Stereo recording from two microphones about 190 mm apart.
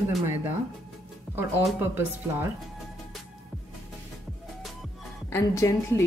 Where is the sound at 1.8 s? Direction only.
10° right (ahead or behind).